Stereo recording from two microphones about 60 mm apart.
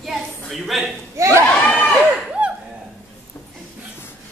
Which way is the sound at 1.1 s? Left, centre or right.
Right.